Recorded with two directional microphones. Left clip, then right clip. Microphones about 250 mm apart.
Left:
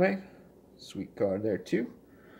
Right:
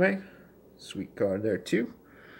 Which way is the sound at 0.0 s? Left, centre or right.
Centre.